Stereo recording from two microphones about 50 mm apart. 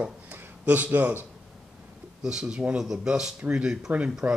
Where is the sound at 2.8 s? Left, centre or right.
Centre.